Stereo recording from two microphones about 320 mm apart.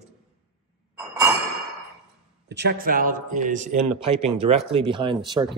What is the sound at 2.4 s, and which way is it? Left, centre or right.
Speech, right.